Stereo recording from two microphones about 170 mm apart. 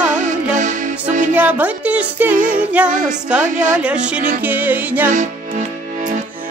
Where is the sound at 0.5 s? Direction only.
45° right (ahead or behind).